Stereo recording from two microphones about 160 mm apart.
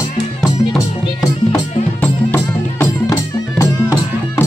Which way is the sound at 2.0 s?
15° left (ahead or behind).